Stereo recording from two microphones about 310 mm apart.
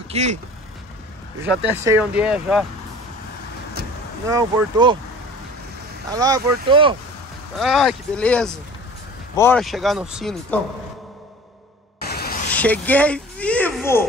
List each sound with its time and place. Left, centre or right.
0.1 s speech: right
1.4 s speech: centre
4.3 s speech: centre
6.1 s speech: centre
7.5 s speech: centre
12.0 s a sound: left
12.4 s speech: centre